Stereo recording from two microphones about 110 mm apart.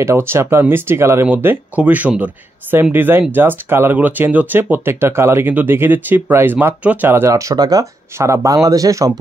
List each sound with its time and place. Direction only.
0.0 s speech: 25° right (ahead or behind)